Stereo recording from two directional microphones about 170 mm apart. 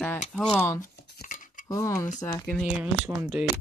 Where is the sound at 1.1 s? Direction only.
50° left (ahead or behind).